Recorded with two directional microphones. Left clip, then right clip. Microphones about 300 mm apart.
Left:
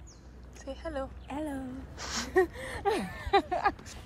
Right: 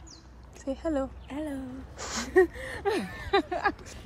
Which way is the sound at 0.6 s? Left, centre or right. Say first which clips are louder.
Right 7 dB; centre.